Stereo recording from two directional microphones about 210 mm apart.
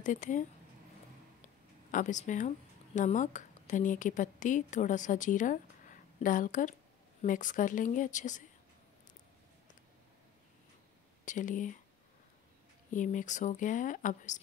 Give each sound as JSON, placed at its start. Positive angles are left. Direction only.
{"t": 0.0, "sound": "a woman's voice", "side_deg": 35}
{"t": 1.9, "sound": "a woman's voice", "side_deg": 35}
{"t": 11.2, "sound": "a woman's voice", "side_deg": 35}
{"t": 12.9, "sound": "a woman's voice", "side_deg": 35}